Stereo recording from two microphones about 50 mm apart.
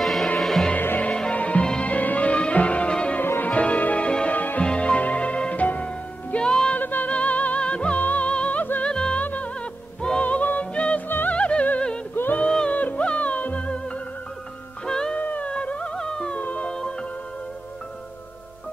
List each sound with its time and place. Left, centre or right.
0.0 s music: centre
0.7 s music: left
1.3 s music: left
4.6 s music: left
6.3 s music: centre
6.8 s music: left; by 9.2 s centre
9.2 s music: left
11.1 s music: left
11.3 s music: left
12.4 s music: centre
12.7 s music: left
14.9 s music: centre
15.1 s music: left
16.3 s music: left